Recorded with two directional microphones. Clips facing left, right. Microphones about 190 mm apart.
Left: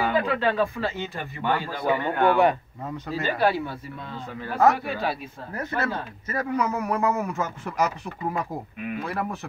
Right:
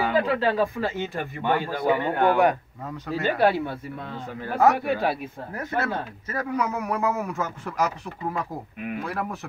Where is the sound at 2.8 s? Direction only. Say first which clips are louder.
Even; 5° left (ahead or behind).